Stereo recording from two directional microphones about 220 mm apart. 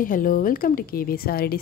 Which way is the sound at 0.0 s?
40° left (ahead or behind).